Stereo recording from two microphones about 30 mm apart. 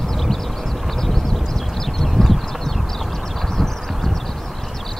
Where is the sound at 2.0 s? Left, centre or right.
Centre.